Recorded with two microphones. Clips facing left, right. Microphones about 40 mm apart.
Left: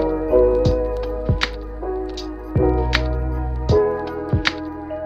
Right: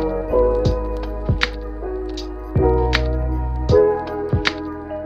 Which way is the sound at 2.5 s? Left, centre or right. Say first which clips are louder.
Right 2 dB; centre.